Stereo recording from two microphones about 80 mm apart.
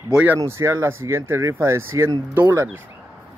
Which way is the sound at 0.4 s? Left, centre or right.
Right.